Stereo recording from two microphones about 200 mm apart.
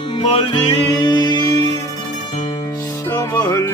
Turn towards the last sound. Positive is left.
turn(degrees=15)  # may be behind; listen again after turning